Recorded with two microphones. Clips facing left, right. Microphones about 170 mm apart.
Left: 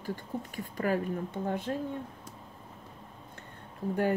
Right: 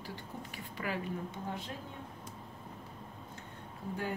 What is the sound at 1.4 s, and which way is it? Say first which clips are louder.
Speech: left 8 dB; 60° left (ahead or behind).